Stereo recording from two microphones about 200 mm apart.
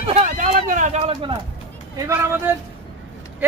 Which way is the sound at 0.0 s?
35° right (ahead or behind).